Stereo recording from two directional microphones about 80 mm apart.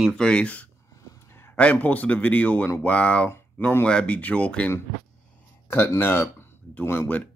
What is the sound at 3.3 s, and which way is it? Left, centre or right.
Speech, left.